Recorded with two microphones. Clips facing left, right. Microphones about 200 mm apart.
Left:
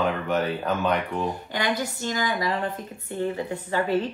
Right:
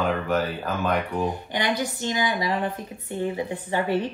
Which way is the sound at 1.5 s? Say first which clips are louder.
Right 1 dB; 20° right (ahead or behind).